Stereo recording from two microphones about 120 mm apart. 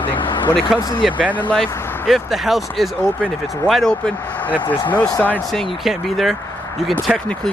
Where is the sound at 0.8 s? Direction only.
30° left (ahead or behind).